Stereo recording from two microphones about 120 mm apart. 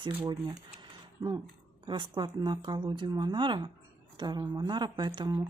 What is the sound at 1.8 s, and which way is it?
A woman's voice, 40° right (ahead or behind).